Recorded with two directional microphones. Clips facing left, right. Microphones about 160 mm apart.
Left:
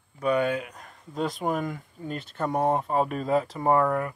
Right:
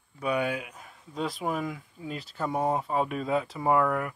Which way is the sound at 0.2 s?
10° right (ahead or behind).